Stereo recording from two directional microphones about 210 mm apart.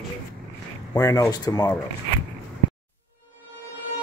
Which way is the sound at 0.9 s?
15° left (ahead or behind).